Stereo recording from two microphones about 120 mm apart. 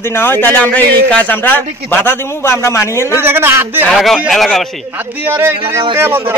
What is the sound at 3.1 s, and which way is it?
Speech, 20° right (ahead or behind).